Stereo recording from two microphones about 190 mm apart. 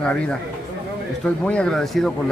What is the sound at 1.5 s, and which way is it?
Speech, 5° left (ahead or behind).